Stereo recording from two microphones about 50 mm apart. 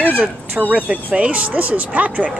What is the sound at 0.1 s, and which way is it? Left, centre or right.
Speech, right.